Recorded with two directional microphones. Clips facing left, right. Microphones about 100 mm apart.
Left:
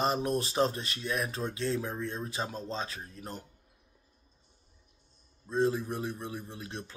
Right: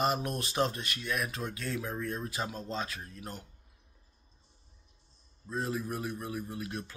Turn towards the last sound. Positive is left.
turn(degrees=30)  # may be behind; listen again after turning